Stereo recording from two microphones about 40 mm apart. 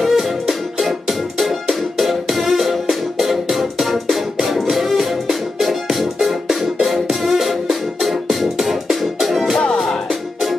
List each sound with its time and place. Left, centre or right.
0.1 s music: centre
9.6 s music: left